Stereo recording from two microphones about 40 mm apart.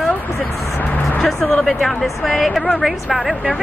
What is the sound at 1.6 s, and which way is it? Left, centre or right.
A woman's voice, centre.